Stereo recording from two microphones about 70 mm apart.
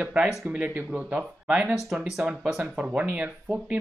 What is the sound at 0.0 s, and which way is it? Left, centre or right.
Speech, centre.